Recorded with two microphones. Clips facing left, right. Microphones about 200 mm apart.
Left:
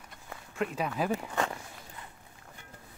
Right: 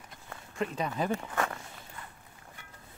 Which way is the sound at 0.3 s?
5° left (ahead or behind).